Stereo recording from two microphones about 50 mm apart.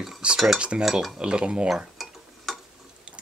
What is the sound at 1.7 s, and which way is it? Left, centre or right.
Mechanisms, centre.